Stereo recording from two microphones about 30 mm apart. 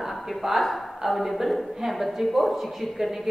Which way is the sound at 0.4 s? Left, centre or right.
Centre.